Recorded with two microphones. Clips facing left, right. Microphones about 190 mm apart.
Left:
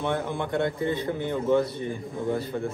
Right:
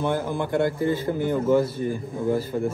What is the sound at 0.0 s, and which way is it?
A man's voice, centre (ahead or behind).